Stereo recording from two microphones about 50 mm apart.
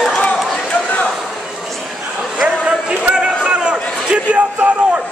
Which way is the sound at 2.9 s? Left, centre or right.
Centre.